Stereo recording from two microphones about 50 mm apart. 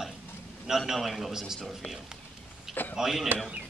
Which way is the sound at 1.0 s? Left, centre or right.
Centre.